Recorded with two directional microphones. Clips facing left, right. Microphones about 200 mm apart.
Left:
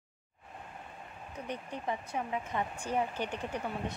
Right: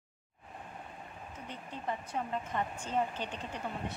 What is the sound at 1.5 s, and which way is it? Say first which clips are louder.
Speech: left 3 dB; 15° left (ahead or behind).